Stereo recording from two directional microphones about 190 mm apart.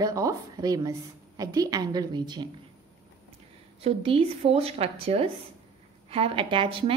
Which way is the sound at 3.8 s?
30° right (ahead or behind).